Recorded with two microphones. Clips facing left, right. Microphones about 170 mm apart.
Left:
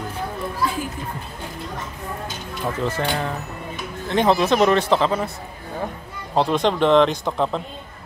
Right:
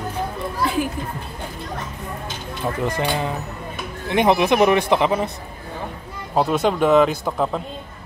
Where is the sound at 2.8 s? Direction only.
15° right (ahead or behind).